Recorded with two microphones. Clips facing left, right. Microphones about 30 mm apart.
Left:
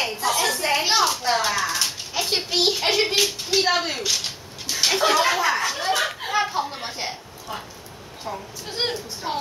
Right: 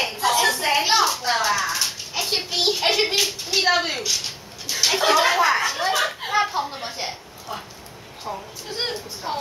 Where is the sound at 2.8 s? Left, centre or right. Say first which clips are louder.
Right 1 dB; centre.